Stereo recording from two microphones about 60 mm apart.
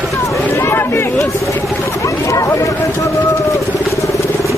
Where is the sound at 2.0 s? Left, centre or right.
Left.